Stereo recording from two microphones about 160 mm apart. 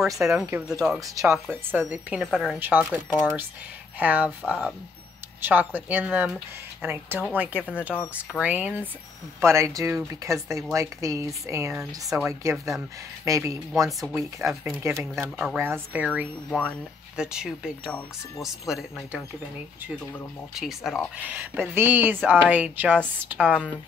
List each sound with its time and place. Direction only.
0.2 s speech: 5° right (ahead or behind); by 11.7 s 20° right (ahead or behind)
11.7 s speech: 5° right (ahead or behind)
12.3 s speech: 20° right (ahead or behind)
16.4 s speech: 5° left (ahead or behind)
17.2 s speech: 5° right (ahead or behind)
20.5 s speech: centre (ahead or behind)
21.3 s speech: 15° right (ahead or behind)